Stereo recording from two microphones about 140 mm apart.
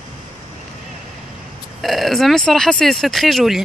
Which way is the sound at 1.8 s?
Centre (ahead or behind).